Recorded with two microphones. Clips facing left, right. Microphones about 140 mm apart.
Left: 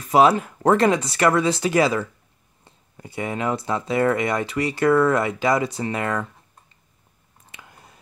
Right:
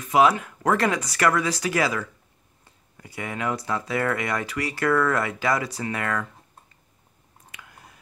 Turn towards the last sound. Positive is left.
turn(degrees=25)  # may be behind; listen again after turning